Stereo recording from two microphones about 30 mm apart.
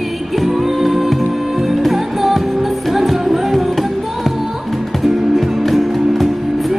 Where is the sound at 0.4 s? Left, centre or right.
Centre.